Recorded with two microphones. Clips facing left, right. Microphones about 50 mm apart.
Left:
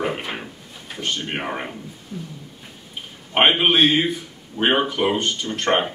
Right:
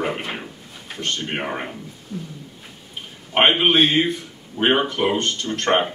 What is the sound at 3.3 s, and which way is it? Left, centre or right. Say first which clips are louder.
Speech: even; centre.